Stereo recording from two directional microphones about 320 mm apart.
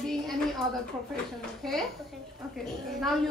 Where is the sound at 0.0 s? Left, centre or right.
Centre.